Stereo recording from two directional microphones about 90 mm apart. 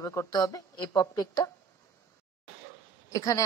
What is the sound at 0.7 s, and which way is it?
Speech, 55° left (ahead or behind).